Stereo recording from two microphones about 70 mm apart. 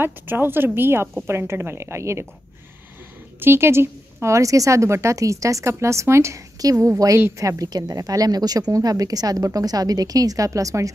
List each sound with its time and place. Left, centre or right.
0.0 s a woman's voice: right
3.3 s speech: right
6.6 s speech: right